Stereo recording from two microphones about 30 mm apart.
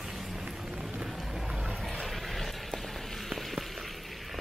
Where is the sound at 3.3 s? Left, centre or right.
Centre.